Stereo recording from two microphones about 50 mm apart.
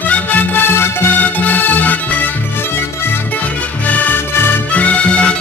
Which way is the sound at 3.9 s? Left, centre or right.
Left.